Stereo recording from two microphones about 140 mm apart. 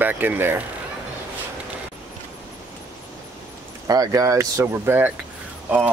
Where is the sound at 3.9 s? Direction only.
25° right (ahead or behind).